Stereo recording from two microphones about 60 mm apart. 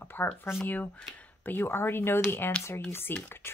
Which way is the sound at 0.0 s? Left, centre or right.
Left.